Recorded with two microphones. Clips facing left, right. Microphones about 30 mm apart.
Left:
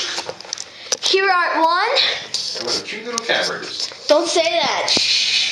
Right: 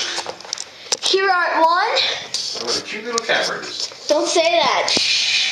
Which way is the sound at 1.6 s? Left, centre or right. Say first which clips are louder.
Even; centre.